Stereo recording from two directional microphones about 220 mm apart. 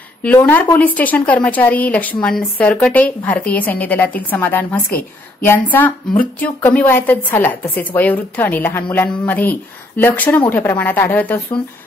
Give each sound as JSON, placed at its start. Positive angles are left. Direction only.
{"t": 0.2, "sound": "a woman's voice", "side_deg": 5}